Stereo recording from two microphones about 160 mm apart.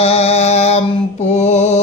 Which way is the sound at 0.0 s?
40° left (ahead or behind).